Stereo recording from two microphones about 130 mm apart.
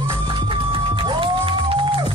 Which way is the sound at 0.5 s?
40° right (ahead or behind).